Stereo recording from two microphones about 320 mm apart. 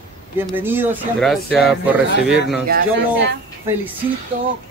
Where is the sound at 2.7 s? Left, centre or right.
Right.